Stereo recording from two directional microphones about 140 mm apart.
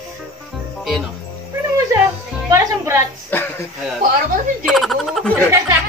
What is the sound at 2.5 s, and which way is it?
Music, 20° right (ahead or behind).